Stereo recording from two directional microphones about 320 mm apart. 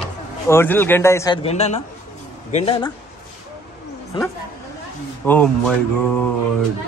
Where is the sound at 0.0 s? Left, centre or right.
Centre.